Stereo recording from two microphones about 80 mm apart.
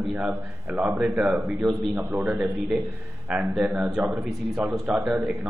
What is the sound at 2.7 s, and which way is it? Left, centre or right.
A man's voice, centre.